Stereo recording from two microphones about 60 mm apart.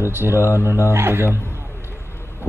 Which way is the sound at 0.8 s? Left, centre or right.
Right.